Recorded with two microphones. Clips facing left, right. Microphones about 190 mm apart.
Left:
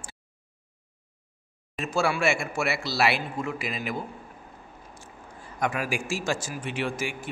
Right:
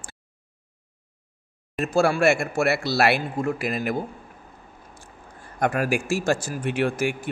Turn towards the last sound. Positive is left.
turn(degrees=-60)  # may be behind; listen again after turning